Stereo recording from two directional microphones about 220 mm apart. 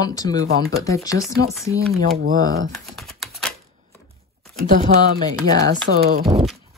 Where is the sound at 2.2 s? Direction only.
35° right (ahead or behind).